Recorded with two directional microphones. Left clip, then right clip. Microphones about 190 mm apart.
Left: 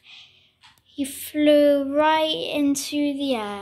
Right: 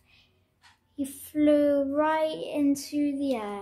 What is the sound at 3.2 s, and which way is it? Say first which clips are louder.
Speech: left 4 dB; 10° left (ahead or behind).